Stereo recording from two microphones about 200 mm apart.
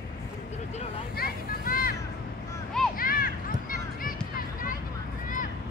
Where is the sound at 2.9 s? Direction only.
45° left (ahead or behind).